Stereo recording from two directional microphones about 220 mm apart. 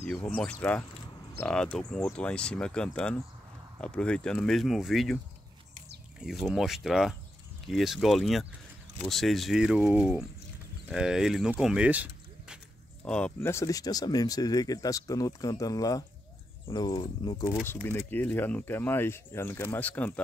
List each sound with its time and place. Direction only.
0.0 s speech: 5° left (ahead or behind)
6.2 s speech: centre (ahead or behind)
13.0 s speech: 5° left (ahead or behind)